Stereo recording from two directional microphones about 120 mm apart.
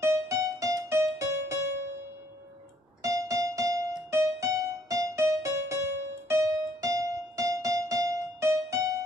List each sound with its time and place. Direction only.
0.0 s music: 25° right (ahead or behind)
3.0 s music: 25° right (ahead or behind)